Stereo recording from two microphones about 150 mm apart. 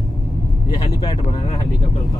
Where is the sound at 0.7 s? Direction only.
30° left (ahead or behind).